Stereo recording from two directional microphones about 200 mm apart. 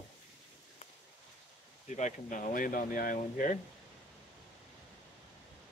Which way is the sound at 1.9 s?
40° left (ahead or behind).